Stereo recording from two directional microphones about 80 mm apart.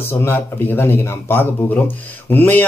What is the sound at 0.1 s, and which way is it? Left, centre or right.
Speech, left.